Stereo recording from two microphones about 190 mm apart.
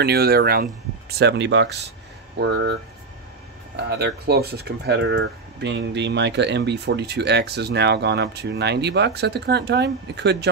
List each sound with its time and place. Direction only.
0.0 s speech: 55° right (ahead or behind)
3.7 s speech: 60° right (ahead or behind)